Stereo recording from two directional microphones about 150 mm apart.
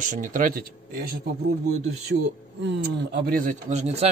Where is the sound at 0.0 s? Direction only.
60° right (ahead or behind); by 1.3 s 80° right.